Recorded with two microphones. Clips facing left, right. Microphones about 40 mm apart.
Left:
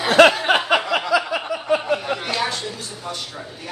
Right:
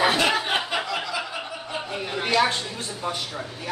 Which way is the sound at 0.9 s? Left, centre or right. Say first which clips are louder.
Left 9 dB; left.